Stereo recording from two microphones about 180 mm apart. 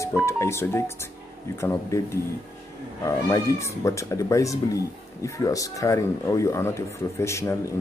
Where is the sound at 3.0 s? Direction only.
15° left (ahead or behind).